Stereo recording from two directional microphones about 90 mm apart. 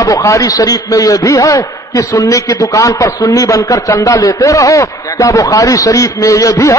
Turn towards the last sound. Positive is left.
turn(degrees=40)  # may be behind; listen again after turning